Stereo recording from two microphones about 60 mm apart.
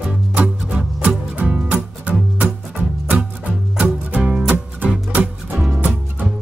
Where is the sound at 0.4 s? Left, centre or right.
Right.